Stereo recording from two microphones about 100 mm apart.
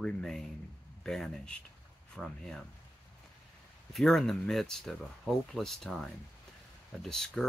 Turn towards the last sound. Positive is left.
turn(degrees=5)  # may be behind; listen again after turning